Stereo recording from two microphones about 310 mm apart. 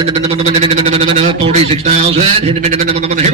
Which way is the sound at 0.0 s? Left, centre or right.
Centre.